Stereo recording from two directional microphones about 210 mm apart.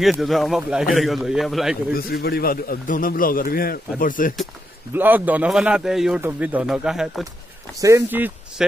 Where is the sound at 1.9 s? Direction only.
45° left (ahead or behind).